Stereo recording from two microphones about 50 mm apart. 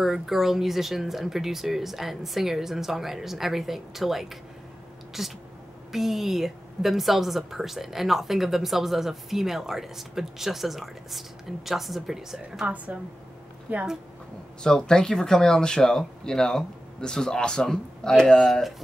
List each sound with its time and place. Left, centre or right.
0.0 s a woman's voice: centre
12.6 s a woman's voice: right
14.6 s speech: centre